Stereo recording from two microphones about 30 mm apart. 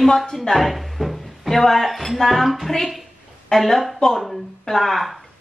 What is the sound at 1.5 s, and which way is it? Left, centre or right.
A woman's voice, centre.